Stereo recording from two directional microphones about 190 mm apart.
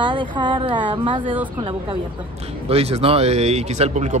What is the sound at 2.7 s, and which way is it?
Speech, 30° right (ahead or behind).